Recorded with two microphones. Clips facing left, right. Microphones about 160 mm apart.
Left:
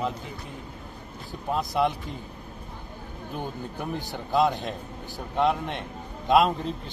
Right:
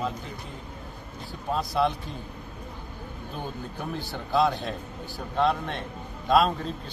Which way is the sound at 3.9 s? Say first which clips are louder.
Left 1 dB; 20° left (ahead or behind).